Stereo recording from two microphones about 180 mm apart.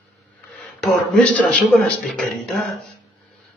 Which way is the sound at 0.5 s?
Centre (ahead or behind).